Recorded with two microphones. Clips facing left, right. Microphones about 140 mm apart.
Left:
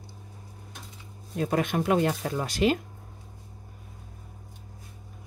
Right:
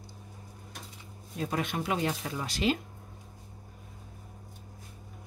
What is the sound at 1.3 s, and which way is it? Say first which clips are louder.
Speech: left 6 dB; 55° left (ahead or behind).